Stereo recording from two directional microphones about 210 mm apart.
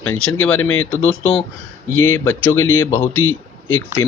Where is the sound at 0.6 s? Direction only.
70° left (ahead or behind).